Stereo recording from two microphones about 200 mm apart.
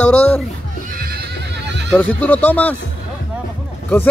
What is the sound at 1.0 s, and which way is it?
Neigh, 50° right (ahead or behind).